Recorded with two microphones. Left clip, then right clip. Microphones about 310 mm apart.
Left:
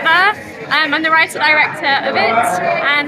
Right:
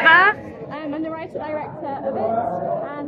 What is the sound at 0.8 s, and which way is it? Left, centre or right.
Speech, left.